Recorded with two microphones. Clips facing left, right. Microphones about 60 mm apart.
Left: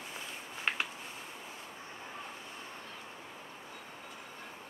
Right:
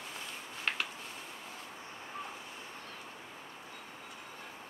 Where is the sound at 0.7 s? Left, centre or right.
Centre.